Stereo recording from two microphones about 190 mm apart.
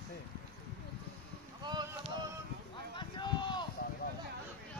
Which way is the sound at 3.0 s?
25° left (ahead or behind).